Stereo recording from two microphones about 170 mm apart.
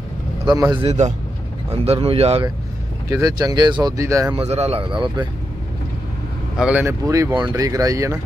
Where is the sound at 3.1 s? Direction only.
20° right (ahead or behind).